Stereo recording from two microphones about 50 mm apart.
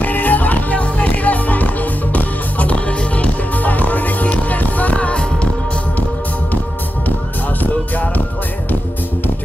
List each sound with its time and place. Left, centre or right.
0.0 s music: left
7.6 s music: left